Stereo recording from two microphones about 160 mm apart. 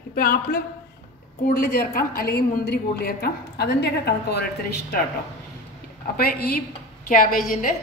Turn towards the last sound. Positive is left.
turn(degrees=60)  # may be behind; listen again after turning